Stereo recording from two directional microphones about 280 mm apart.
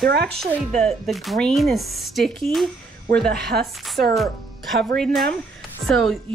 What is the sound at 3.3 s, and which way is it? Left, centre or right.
Speech, right.